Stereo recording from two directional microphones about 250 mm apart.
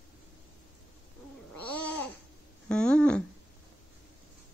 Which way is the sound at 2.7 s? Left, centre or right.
Centre.